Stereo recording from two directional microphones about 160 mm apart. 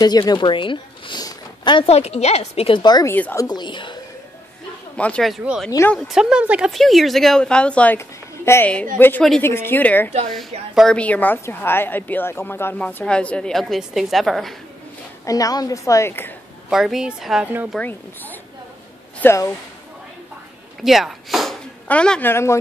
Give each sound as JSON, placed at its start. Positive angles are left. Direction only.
{"t": 0.0, "sound": "speech", "side_deg": 25}
{"t": 1.9, "sound": "a woman's voice", "side_deg": 40}
{"t": 3.1, "sound": "a woman's voice", "side_deg": 15}
{"t": 3.4, "sound": "a woman's voice", "side_deg": 30}
{"t": 4.9, "sound": "a woman's voice", "side_deg": 5}
{"t": 10.7, "sound": "a woman's voice", "side_deg": 0}
{"t": 15.2, "sound": "a woman's voice", "side_deg": 20}
{"t": 16.7, "sound": "speech", "side_deg": -5}
{"t": 17.7, "sound": "a woman's voice", "side_deg": 10}
{"t": 20.8, "sound": "a woman's voice", "side_deg": 0}